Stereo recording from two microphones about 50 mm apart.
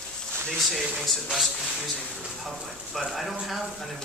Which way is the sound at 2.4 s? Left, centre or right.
Centre.